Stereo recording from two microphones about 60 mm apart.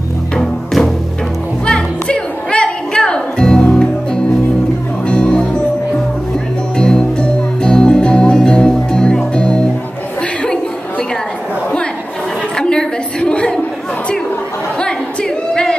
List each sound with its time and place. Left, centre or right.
1.7 s music: centre
6.8 s music: centre
12.5 s a sound: centre